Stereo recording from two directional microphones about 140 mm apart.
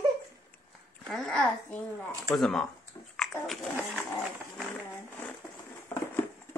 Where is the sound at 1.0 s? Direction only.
Centre (ahead or behind).